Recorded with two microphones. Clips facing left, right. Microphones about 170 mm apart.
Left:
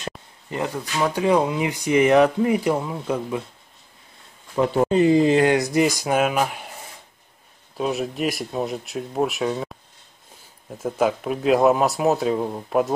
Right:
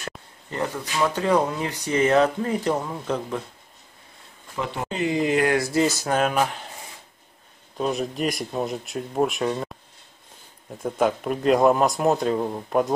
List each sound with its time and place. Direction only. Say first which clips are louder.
0.5 s speech: left 1 dB; 15° left (ahead or behind)
4.6 s speech: left 10 dB; 35° left (ahead or behind); by 6.7 s 10° left (ahead or behind)
7.7 s speech: left 1 dB; 5° left (ahead or behind)
10.8 s speech: left 1 dB; 5° left (ahead or behind)